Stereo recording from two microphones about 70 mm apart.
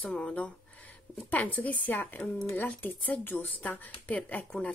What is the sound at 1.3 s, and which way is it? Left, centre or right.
A woman's voice, left.